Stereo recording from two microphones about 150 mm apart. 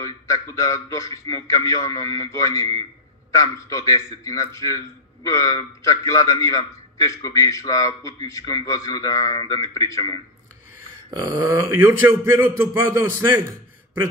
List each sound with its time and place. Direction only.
0.0 s a man's voice: 20° left (ahead or behind)
11.1 s speech: 25° right (ahead or behind)